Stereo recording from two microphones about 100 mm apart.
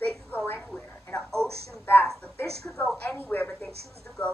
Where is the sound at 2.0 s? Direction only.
5° left (ahead or behind); by 3.5 s 20° left (ahead or behind).